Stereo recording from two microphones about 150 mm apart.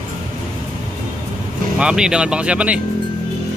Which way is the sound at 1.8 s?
5° right (ahead or behind).